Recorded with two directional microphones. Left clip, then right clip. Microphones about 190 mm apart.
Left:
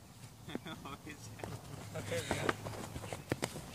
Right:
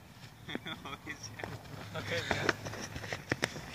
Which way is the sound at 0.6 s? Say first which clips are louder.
Right 5 dB; 35° left (ahead or behind).